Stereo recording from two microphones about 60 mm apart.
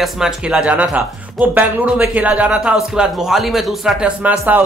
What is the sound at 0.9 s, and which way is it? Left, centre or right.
A man's voice, right.